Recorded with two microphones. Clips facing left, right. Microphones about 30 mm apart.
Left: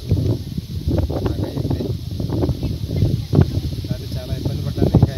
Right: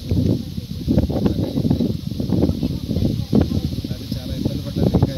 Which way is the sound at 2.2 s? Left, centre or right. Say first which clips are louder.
Right 3 dB; centre.